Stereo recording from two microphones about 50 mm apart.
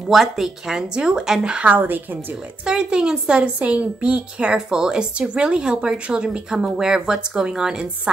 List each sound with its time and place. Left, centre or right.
0.1 s a woman's voice: centre